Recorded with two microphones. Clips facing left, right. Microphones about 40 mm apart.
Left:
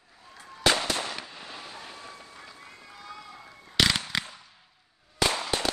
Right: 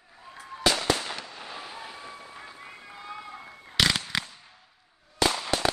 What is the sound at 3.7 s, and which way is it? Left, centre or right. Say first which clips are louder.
Fireworks: even; centre.